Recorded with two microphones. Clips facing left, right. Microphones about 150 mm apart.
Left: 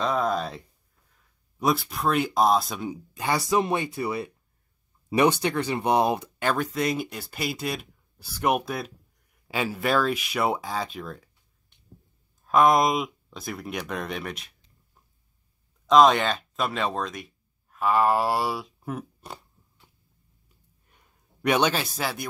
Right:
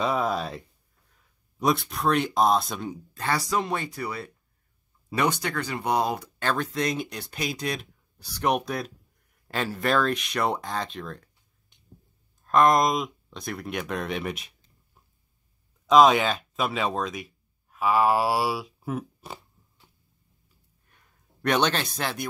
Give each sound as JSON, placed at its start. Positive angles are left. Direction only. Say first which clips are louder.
{"t": 0.0, "sound": "a sound", "louder": "left 1 dB", "side_deg": -5}
{"t": 1.6, "sound": "speech", "louder": "even", "side_deg": 0}
{"t": 3.2, "sound": "speech", "louder": "left 3 dB", "side_deg": 15}
{"t": 6.4, "sound": "speech", "louder": "left 1 dB", "side_deg": 10}
{"t": 12.4, "sound": "speech", "louder": "even", "side_deg": 5}
{"t": 15.9, "sound": "speech", "louder": "even", "side_deg": -5}
{"t": 20.9, "sound": "speech", "louder": "even", "side_deg": 10}